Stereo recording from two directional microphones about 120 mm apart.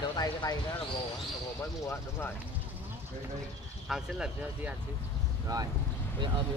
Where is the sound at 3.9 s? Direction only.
5° right (ahead or behind).